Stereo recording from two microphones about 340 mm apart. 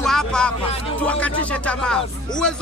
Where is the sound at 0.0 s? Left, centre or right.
Centre.